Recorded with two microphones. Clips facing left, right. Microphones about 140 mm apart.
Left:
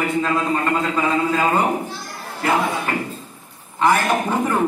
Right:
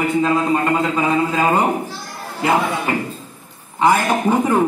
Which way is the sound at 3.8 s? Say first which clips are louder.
Right 2 dB; 15° right (ahead or behind).